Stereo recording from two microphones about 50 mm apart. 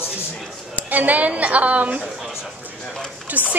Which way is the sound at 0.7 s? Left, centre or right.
Right.